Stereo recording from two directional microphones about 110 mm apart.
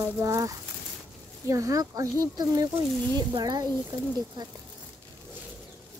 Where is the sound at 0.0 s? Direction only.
30° right (ahead or behind).